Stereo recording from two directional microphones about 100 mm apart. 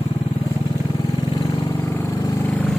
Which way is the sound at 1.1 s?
40° left (ahead or behind).